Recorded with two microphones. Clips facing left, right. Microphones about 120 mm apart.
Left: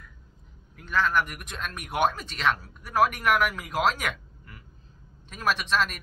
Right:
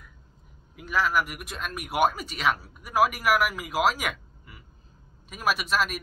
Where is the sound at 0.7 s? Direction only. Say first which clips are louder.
Even; 5° right (ahead or behind).